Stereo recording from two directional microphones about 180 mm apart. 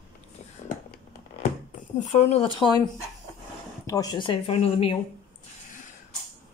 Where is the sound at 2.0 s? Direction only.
40° left (ahead or behind).